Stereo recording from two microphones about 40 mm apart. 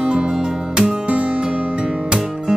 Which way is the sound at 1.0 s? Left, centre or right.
Right.